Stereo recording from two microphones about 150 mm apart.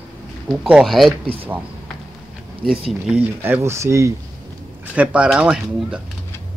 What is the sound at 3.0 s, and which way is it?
Speech, 10° right (ahead or behind).